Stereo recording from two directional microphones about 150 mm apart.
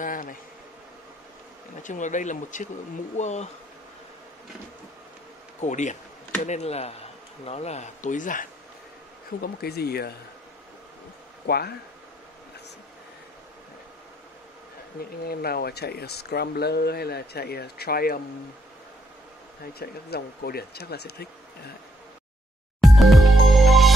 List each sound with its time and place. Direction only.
0.0 s bee: 65° left (ahead or behind)
1.8 s speech: 55° left (ahead or behind)
5.6 s speech: 55° left (ahead or behind)
9.4 s speech: 90° left
11.4 s speech: 90° left
15.2 s speech: 90° left
19.6 s speech: 90° left
22.8 s music: centre (ahead or behind)